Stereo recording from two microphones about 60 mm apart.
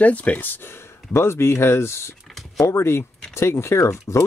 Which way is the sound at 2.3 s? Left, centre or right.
Centre.